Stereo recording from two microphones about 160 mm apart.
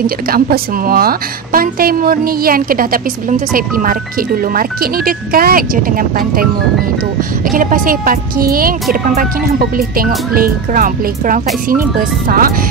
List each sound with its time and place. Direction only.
0.0 s a woman's voice: 65° right (ahead or behind)
7.4 s a woman's voice: 60° right (ahead or behind)